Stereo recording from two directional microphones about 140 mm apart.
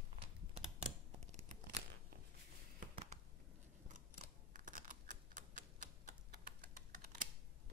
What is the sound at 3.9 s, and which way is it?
Typing, 70° right (ahead or behind).